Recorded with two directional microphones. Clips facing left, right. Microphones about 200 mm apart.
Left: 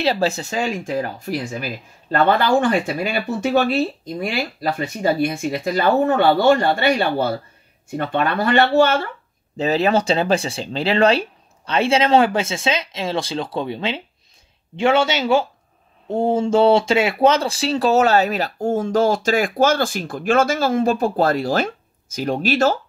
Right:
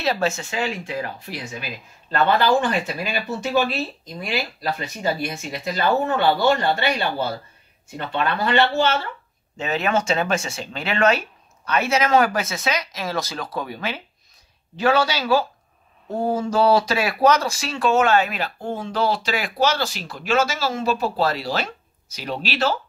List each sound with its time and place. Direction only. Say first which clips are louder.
0.0 s speech: left 3 dB; 30° left (ahead or behind); by 2.4 s 55° left (ahead or behind)
4.2 s speech: left 3 dB; 55° left (ahead or behind)
9.6 s speech: left 5 dB; 35° left (ahead or behind)